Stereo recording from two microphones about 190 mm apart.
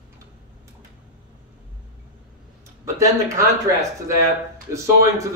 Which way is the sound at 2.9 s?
15° right (ahead or behind).